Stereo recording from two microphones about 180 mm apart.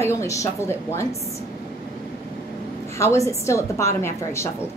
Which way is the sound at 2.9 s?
15° left (ahead or behind).